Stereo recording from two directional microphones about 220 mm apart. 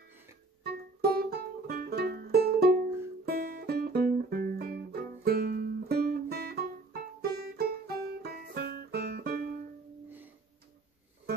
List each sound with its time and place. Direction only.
0.7 s music: 45° right (ahead or behind)